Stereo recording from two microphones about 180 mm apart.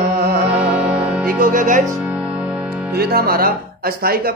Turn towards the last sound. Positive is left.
turn(degrees=-55)  # may be behind; listen again after turning